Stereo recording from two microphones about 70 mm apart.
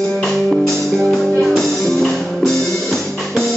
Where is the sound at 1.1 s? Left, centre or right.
Centre.